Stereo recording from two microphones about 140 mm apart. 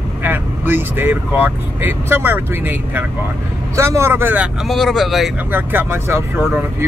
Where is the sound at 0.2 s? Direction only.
15° right (ahead or behind).